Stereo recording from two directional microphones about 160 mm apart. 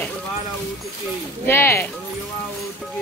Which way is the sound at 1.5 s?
15° left (ahead or behind).